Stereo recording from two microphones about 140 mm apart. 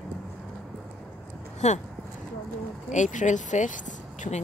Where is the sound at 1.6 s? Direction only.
55° left (ahead or behind).